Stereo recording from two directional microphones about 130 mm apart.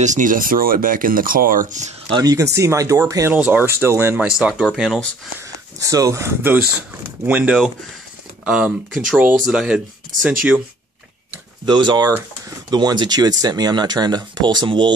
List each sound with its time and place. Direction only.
0.0 s speech: 80° right
2.0 s speech: 30° right (ahead or behind)
3.3 s speech: 15° right (ahead or behind)
4.3 s speech: 5° right (ahead or behind)
5.8 s speech: 25° right (ahead or behind); by 9.8 s 5° right (ahead or behind)
11.6 s speech: 35° right (ahead or behind)